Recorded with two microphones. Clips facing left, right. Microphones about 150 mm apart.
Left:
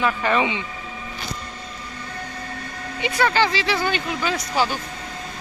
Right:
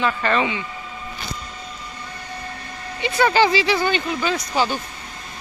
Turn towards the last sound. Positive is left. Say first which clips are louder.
# right 1 dB
turn(degrees=5)  # may be behind; listen again after turning